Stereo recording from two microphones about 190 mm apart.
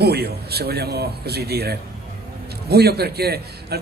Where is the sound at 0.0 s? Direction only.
55° right (ahead or behind).